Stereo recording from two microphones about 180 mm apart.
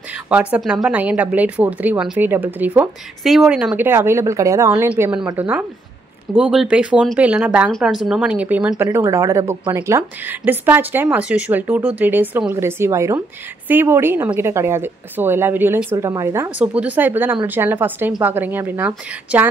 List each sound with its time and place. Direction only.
0.3 s speech: 5° right (ahead or behind)